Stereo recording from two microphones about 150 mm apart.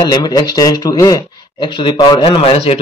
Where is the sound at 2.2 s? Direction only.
40° left (ahead or behind).